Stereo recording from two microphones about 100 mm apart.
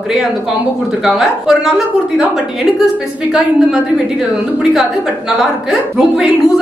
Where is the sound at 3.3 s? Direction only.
5° right (ahead or behind).